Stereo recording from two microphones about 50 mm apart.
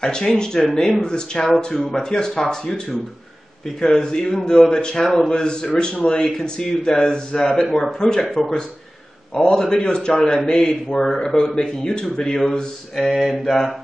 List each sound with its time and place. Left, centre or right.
0.0 s a man's voice: centre
12.9 s mantra: centre
13.4 s mantra: centre